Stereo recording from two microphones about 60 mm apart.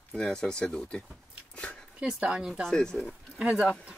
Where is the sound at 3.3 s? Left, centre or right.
Centre.